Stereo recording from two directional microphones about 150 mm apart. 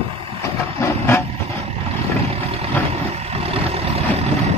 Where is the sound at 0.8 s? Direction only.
15° left (ahead or behind).